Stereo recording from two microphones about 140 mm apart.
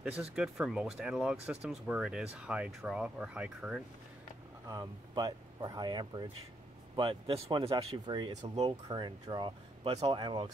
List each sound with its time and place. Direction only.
0.0 s speech: 5° right (ahead or behind)
4.6 s speech: 30° right (ahead or behind); by 7.5 s 45° right (ahead or behind)
7.7 s speech: 30° right (ahead or behind)
8.4 s speech: 45° right (ahead or behind)
8.8 s speech: 30° right (ahead or behind)